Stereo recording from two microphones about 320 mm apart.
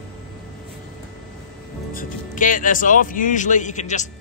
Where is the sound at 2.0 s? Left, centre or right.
Left.